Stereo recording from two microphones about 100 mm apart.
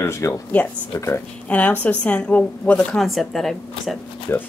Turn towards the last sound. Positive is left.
turn(degrees=25)  # may be behind; listen again after turning